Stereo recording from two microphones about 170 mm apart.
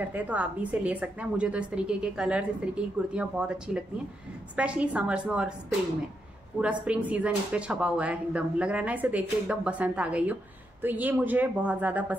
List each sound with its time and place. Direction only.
0.1 s a woman's voice: 10° right (ahead or behind)
6.6 s a woman's voice: 10° right (ahead or behind)